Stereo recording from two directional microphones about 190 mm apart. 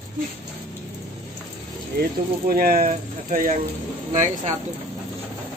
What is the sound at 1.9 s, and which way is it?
Speech, 50° right (ahead or behind).